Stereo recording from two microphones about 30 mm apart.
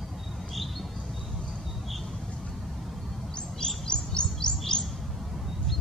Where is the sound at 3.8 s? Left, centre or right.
Left.